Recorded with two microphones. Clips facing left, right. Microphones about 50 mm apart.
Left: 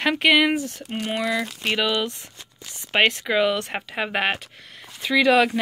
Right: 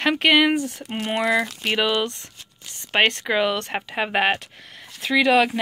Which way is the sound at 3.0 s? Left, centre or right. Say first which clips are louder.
Even; centre.